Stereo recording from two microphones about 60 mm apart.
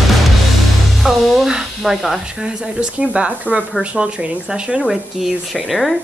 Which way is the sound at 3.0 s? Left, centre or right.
Centre.